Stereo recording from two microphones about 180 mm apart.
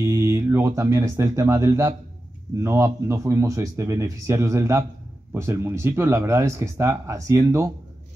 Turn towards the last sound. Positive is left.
turn(degrees=-15)  # may be behind; listen again after turning